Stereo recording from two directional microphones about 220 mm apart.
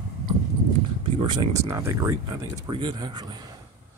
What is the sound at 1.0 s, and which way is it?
Speech, 20° right (ahead or behind).